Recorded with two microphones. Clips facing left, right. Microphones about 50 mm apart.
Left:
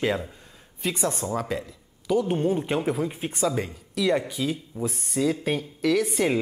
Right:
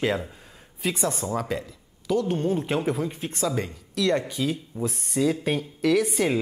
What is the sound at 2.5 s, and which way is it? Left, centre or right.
Speech, centre.